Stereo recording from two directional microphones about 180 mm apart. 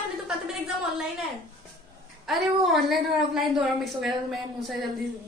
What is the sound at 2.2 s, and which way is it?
A woman's voice, centre (ahead or behind).